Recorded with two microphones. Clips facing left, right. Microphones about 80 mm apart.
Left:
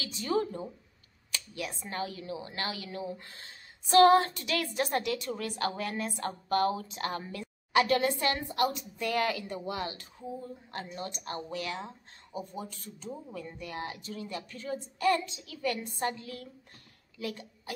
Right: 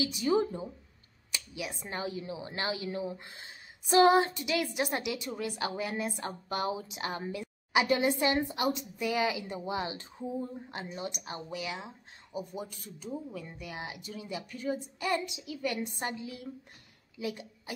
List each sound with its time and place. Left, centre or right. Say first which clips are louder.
0.0 s a woman's voice: right 3 dB; centre